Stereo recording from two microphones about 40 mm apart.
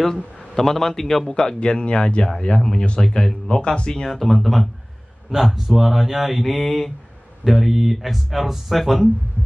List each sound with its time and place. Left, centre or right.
0.4 s a man's voice: centre
1.3 s speech: left
2.2 s speech: centre
4.0 s speech: centre